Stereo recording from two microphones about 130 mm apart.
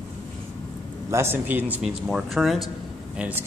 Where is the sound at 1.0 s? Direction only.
20° right (ahead or behind); by 2.6 s centre (ahead or behind).